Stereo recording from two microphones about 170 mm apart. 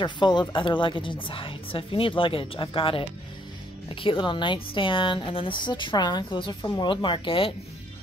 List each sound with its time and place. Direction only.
0.0 s a woman's voice: 25° left (ahead or behind)